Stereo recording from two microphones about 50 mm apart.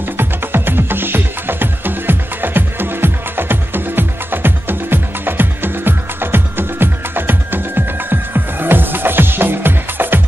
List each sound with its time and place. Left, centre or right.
0.2 s music: right